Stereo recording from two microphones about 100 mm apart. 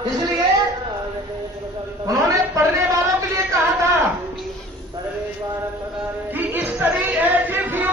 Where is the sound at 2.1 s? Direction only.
30° right (ahead or behind).